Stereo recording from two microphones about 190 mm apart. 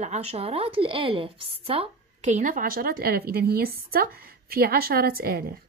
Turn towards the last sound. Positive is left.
turn(degrees=-50)  # may be behind; listen again after turning